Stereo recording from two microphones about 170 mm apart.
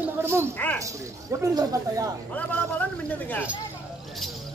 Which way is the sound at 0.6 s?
10° left (ahead or behind).